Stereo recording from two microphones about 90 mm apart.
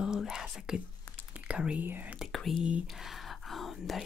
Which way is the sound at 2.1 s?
Centre (ahead or behind).